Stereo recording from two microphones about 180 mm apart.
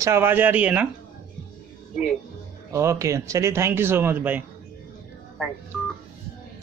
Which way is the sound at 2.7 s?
15° right (ahead or behind).